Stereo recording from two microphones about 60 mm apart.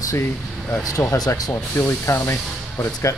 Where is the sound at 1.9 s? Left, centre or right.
Left.